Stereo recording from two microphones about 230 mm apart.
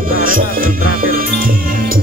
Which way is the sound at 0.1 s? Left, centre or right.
Right.